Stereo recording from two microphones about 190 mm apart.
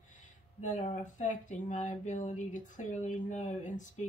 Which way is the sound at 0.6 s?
40° left (ahead or behind).